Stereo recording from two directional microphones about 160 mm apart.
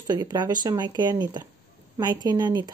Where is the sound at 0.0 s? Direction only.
25° right (ahead or behind).